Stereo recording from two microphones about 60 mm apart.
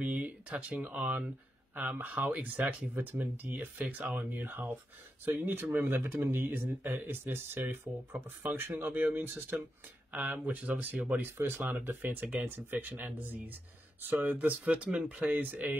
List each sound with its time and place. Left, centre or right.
0.0 s speech: right
11.3 s speech: right
14.6 s speech: centre